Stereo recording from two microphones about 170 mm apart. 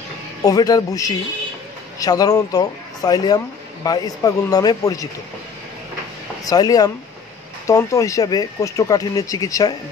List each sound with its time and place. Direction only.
0.4 s speech: 20° left (ahead or behind)
6.4 s speech: 20° left (ahead or behind)